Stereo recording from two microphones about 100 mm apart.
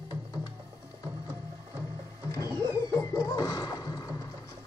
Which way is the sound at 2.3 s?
35° left (ahead or behind).